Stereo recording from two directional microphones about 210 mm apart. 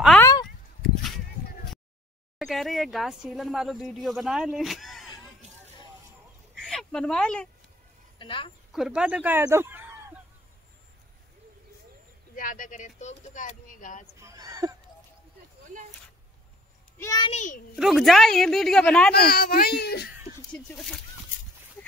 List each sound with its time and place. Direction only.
0.2 s a sound: 20° left (ahead or behind)
2.3 s speech: centre (ahead or behind)
6.5 s a sound: centre (ahead or behind)
8.2 s speech: 25° left (ahead or behind)
8.7 s speech: 5° right (ahead or behind)
12.4 s speech: 40° left (ahead or behind)
14.1 s a sound: 15° right (ahead or behind)
17.0 s a child's voice: 20° left (ahead or behind)
17.3 s speech: 35° left (ahead or behind)
17.7 s speech: centre (ahead or behind)
19.1 s a child's voice: 45° left (ahead or behind)
20.7 s speech: centre (ahead or behind)